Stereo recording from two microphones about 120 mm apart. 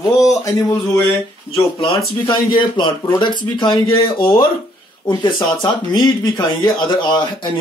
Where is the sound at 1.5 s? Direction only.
50° left (ahead or behind).